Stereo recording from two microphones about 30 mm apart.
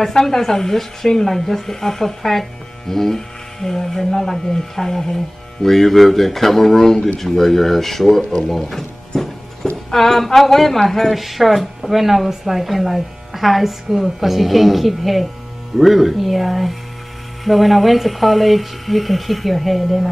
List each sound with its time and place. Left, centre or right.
0.1 s speech: centre
8.2 s speech: left
8.5 s mechanisms: centre
9.9 s speech: centre